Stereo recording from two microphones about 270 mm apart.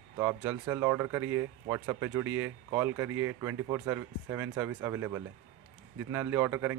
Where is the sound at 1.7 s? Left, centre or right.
Centre.